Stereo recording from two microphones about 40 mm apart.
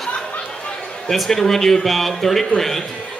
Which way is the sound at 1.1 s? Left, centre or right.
Centre.